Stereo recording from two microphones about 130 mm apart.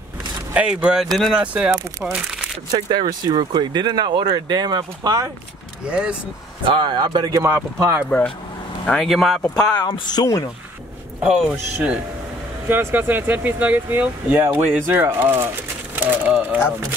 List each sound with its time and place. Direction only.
0.5 s speech: 10° right (ahead or behind)
1.4 s speech: 10° right (ahead or behind)
2.1 s crumpling: 5° right (ahead or behind)
2.7 s speech: 35° right (ahead or behind)
5.9 s speech: 10° right (ahead or behind)
6.6 s speech: 35° right (ahead or behind); by 8.1 s 20° right (ahead or behind)
8.8 s speech: 5° left (ahead or behind)
10.0 s speech: 30° left (ahead or behind)
12.6 s speech: 15° right (ahead or behind)